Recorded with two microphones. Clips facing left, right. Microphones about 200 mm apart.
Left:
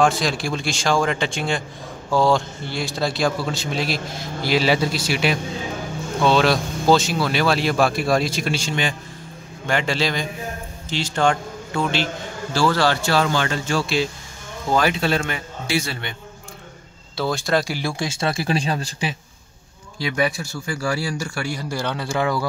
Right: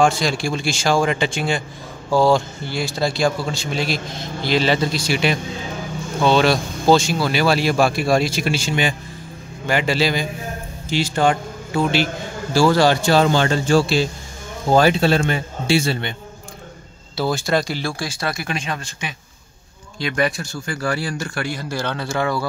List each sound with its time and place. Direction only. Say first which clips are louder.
0.0 s a man's voice: right 2 dB; centre (ahead or behind); by 16.2 s 25° right (ahead or behind)
17.2 s a man's voice: right 1 dB; 5° right (ahead or behind)
17.6 s speech: even; 15° left (ahead or behind); by 19.1 s 35° left (ahead or behind)
20.2 s speech: right 1 dB; 5° left (ahead or behind)